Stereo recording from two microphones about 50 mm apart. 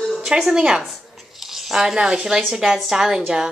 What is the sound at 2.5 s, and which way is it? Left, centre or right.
Speech, centre.